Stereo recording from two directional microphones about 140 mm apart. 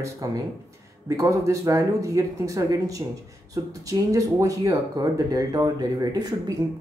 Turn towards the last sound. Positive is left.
turn(degrees=-25)  # may be behind; listen again after turning